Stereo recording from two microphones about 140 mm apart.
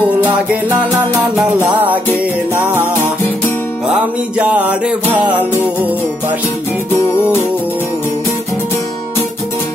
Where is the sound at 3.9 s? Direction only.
10° right (ahead or behind).